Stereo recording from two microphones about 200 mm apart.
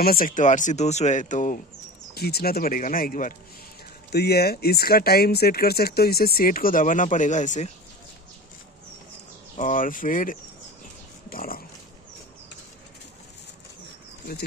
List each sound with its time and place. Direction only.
0.0 s speech: 45° left (ahead or behind)
2.1 s speech: 50° left (ahead or behind)
9.6 s speech: 40° left (ahead or behind)
11.2 s pig: 45° left (ahead or behind)